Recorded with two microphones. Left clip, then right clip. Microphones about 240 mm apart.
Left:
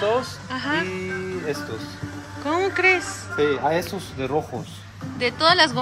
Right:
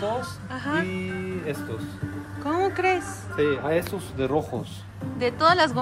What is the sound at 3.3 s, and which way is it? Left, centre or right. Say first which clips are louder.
Speech: left 3 dB; left.